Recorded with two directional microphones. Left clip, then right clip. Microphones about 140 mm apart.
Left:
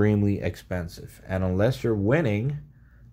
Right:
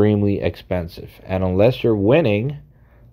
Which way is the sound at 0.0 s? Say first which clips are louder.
Right 7 dB; 20° right (ahead or behind).